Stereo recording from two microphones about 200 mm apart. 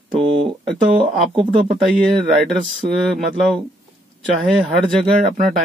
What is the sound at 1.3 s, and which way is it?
Speech, 25° right (ahead or behind).